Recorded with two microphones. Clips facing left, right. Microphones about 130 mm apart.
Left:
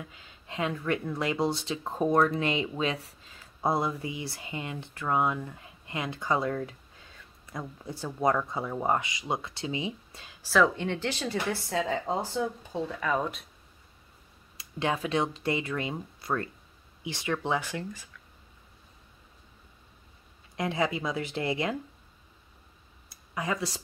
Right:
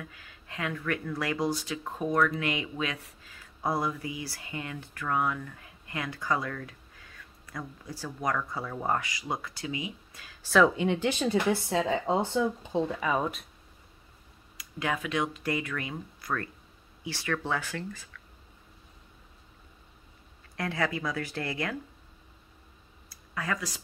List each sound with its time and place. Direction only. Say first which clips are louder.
0.0 s speech: even; 20° left (ahead or behind)
10.4 s speech: right 2 dB; centre (ahead or behind); by 12.9 s 20° right (ahead or behind)
13.0 s speech: even; 5° right (ahead or behind)
14.6 s speech: left 2 dB; 30° left (ahead or behind)
20.5 s speech: left 2 dB; 20° left (ahead or behind)
23.0 s a sound: left 2 dB; 20° left (ahead or behind)